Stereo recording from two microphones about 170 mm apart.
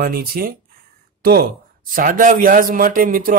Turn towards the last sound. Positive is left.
turn(degrees=-55)  # may be behind; listen again after turning